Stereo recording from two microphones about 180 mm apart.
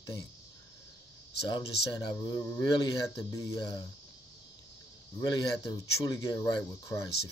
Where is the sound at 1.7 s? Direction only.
65° left (ahead or behind).